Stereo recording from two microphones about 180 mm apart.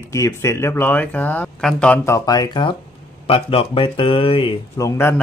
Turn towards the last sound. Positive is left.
turn(degrees=15)  # may be behind; listen again after turning